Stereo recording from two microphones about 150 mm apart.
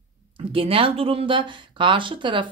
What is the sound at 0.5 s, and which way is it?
Speech, 40° right (ahead or behind).